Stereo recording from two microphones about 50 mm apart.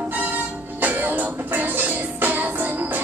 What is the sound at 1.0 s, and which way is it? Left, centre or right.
Music, right.